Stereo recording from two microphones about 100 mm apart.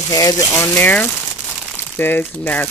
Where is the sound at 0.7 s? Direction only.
20° left (ahead or behind).